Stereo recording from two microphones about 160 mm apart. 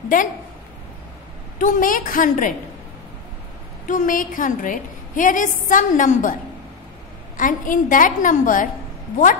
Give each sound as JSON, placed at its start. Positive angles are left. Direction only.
{"t": 1.6, "sound": "a woman's voice", "side_deg": 55}
{"t": 3.8, "sound": "a woman's voice", "side_deg": 55}
{"t": 7.3, "sound": "a woman's voice", "side_deg": 55}